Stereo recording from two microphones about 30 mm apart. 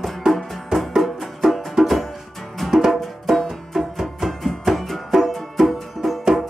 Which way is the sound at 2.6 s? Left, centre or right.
Centre.